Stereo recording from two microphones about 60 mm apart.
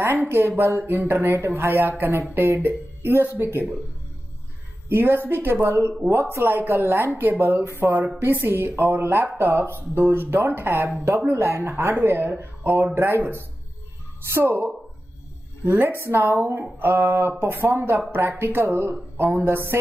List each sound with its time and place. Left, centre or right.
0.0 s speech: right
4.8 s speech: right
6.0 s speech: right
6.4 s speech: right
14.3 s speech: right